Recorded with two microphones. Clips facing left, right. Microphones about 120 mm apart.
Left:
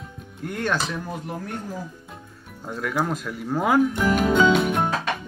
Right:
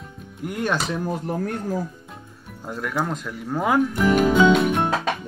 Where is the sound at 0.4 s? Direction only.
10° right (ahead or behind).